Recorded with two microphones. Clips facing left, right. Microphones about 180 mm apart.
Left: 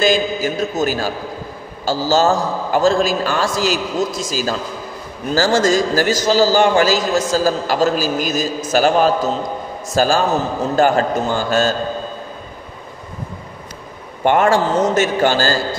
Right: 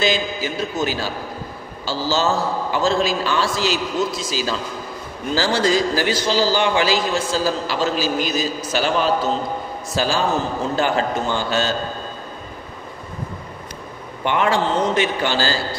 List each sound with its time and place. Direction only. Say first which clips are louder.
0.0 s a man's voice: left 5 dB; 45° left (ahead or behind)
14.2 s a man's voice: left 5 dB; 45° left (ahead or behind)